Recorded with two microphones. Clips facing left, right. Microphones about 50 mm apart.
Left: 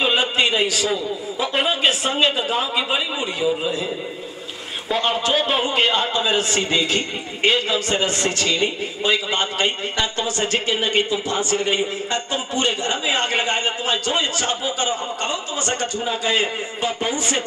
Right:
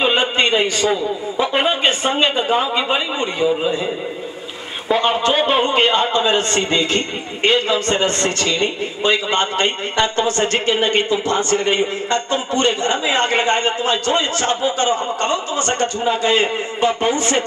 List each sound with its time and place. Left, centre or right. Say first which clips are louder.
0.0 s a sound: right 2 dB; centre
1.4 s a man's voice: right 3 dB; centre
16.2 s a man's voice: right 3 dB; right